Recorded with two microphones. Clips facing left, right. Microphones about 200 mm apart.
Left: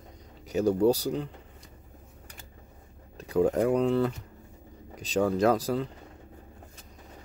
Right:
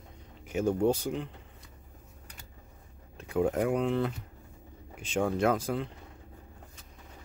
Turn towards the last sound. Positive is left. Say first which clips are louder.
# left 3 dB
turn(degrees=35)  # may be behind; listen again after turning